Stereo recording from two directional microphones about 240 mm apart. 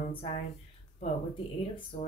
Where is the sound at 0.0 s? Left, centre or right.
Left.